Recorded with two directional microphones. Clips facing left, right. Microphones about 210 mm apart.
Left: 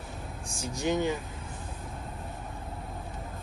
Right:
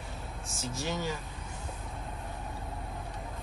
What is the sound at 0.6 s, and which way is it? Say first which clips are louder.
Speech: left 6 dB; 15° left (ahead or behind).